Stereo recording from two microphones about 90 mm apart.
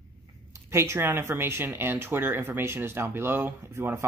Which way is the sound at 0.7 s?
30° right (ahead or behind).